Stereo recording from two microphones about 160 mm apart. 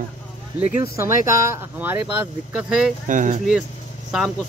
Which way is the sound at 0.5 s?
15° right (ahead or behind).